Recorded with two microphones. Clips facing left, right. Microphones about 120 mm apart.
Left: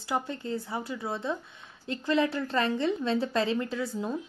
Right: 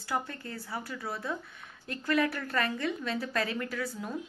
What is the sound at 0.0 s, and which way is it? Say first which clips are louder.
A woman's voice: left 3 dB; 20° left (ahead or behind).